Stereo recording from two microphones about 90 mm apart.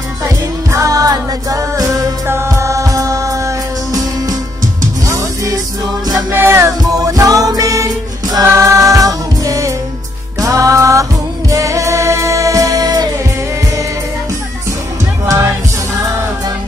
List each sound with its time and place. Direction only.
0.7 s music: 40° right (ahead or behind)
2.2 s music: 30° right (ahead or behind)
6.3 s music: 25° right (ahead or behind)
6.9 s music: 40° right (ahead or behind)